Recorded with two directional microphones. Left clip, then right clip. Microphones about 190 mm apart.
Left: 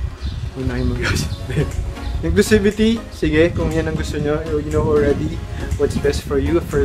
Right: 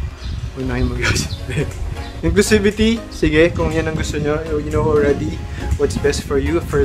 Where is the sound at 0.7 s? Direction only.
15° right (ahead or behind).